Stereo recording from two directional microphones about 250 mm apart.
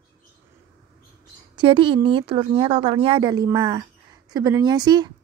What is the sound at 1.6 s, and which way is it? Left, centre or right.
A woman's voice, centre.